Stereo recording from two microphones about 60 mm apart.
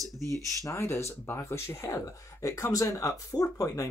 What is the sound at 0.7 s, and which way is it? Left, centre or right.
Speech, left.